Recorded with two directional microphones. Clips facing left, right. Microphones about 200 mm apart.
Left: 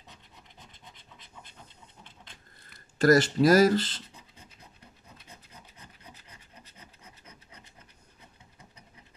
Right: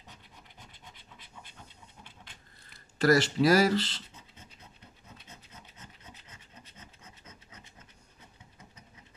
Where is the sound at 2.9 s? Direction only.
50° left (ahead or behind).